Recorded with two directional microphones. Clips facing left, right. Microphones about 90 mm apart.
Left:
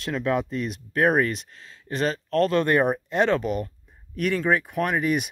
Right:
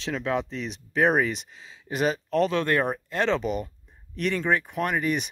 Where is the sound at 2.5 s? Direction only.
15° left (ahead or behind).